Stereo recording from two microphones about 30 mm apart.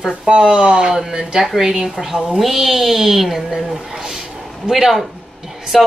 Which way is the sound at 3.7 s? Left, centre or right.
Centre.